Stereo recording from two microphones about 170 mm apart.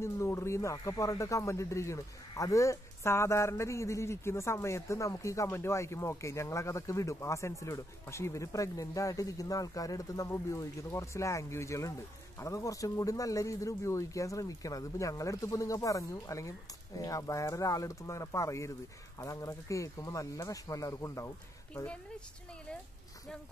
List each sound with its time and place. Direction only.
0.0 s speech: 15° left (ahead or behind)
21.7 s speech: 5° left (ahead or behind)